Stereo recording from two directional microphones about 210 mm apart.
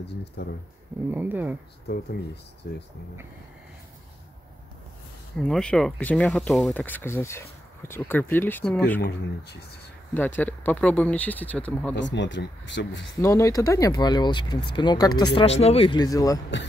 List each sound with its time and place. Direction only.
0.4 s speech: 50° left (ahead or behind)
1.1 s speech: 10° right (ahead or behind)
2.6 s speech: 50° left (ahead or behind)
5.4 s speech: 5° left (ahead or behind)
10.1 s speech: 10° left (ahead or behind)
11.9 s speech: 60° left (ahead or behind)
13.2 s speech: 15° left (ahead or behind)